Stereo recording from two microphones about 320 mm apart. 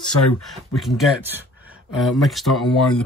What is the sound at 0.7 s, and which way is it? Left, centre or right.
Speech, centre.